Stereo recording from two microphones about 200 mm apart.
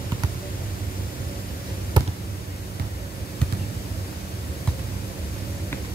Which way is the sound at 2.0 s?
20° right (ahead or behind).